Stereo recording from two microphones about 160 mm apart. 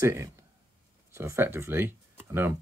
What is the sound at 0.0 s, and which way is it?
Speech, 20° right (ahead or behind).